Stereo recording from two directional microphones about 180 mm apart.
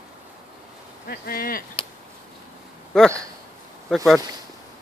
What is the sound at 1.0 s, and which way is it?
Speech, 55° left (ahead or behind).